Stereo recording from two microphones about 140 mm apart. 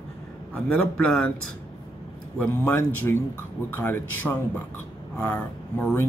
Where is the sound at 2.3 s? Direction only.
15° left (ahead or behind).